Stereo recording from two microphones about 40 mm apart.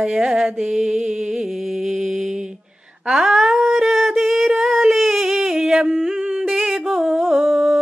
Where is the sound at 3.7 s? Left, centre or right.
Centre.